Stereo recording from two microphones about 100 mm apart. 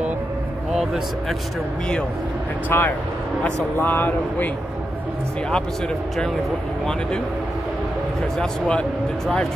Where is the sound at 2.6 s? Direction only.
20° left (ahead or behind).